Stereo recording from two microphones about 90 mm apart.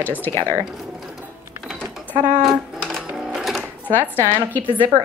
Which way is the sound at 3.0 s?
10° right (ahead or behind).